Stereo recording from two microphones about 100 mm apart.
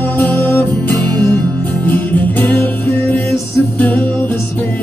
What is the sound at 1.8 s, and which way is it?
Music, 15° left (ahead or behind).